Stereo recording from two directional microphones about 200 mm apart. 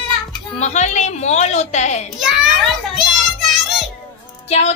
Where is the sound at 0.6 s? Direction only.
35° left (ahead or behind).